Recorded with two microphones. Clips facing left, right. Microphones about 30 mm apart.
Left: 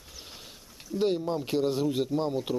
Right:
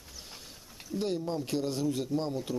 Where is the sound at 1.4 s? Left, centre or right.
Left.